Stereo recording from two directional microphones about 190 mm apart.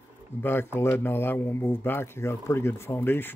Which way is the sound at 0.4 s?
10° left (ahead or behind).